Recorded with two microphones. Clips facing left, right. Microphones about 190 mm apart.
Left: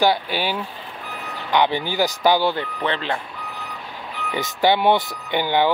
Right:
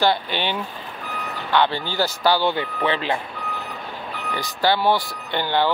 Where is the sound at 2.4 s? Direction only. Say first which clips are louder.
Even; centre (ahead or behind).